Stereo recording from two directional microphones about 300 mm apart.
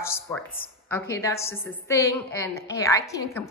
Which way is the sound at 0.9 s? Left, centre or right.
Centre.